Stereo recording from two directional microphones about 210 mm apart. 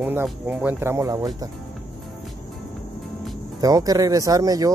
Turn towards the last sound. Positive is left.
turn(degrees=-15)  # may be behind; listen again after turning